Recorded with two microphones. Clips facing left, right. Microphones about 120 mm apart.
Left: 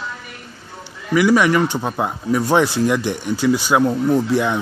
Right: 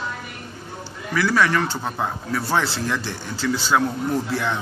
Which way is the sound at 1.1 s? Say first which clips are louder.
Left 6 dB; 15° left (ahead or behind).